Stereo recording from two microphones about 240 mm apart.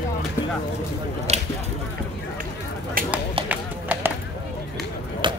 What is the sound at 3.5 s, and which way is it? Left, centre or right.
Run, centre.